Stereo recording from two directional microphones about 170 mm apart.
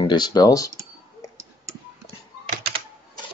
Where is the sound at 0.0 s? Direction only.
25° left (ahead or behind).